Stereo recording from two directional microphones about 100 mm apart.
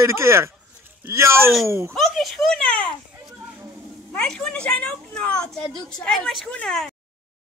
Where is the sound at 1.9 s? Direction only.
Centre (ahead or behind).